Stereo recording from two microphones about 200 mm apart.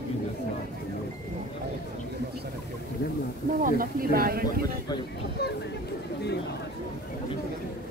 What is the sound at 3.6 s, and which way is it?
Speech, 45° right (ahead or behind).